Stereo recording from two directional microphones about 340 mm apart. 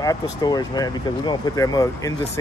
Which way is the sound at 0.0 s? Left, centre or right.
Centre.